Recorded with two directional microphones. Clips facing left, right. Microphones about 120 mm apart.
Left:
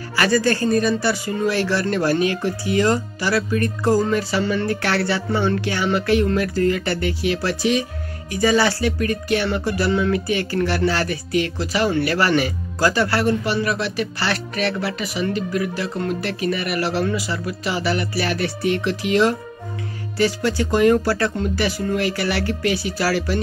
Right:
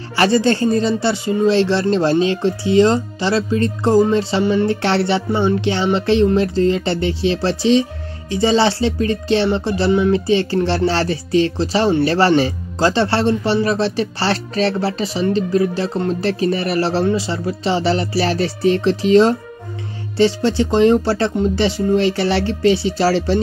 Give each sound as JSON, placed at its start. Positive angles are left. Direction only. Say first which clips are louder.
{"t": 0.1, "sound": "speech", "louder": "right 4 dB", "side_deg": -25}